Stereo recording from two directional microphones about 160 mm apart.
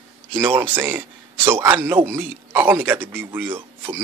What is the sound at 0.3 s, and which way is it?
A man's voice, 15° right (ahead or behind).